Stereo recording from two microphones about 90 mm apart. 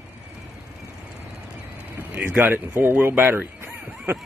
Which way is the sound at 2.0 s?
20° right (ahead or behind).